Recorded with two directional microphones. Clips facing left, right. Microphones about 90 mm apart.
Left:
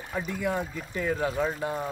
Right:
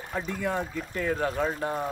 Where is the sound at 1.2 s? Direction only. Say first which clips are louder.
Even; centre (ahead or behind).